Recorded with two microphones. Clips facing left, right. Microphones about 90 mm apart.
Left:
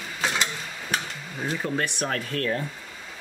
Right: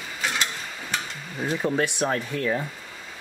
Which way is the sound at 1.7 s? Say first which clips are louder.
Right 3 dB; 15° right (ahead or behind).